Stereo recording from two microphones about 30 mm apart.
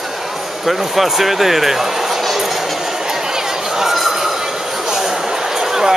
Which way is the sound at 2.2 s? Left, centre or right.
Centre.